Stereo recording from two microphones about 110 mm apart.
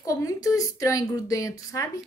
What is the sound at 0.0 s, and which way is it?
A woman's voice, 30° left (ahead or behind).